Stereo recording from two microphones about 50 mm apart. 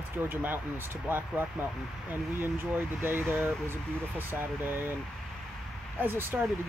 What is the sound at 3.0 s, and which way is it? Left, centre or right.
Speech, right.